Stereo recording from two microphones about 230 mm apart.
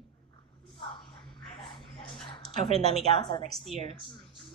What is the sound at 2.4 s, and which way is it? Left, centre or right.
A woman's voice, left.